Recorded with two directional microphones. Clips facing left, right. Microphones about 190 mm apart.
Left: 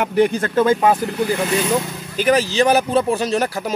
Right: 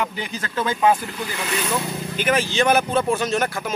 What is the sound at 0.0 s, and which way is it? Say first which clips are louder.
Speech: left 11 dB; 60° left (ahead or behind).